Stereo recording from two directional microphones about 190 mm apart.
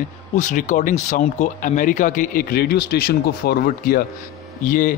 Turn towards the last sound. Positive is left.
turn(degrees=45)  # may be behind; listen again after turning